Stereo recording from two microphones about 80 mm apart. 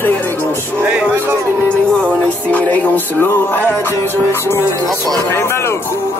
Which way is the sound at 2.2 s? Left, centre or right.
Centre.